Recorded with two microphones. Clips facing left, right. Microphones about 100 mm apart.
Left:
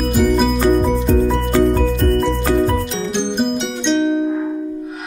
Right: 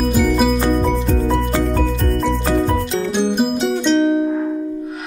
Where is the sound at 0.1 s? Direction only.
Centre (ahead or behind).